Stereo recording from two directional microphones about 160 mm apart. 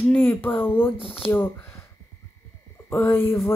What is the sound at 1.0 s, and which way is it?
Speech, 35° left (ahead or behind).